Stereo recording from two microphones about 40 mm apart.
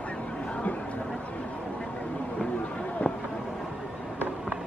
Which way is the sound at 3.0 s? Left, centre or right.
Left.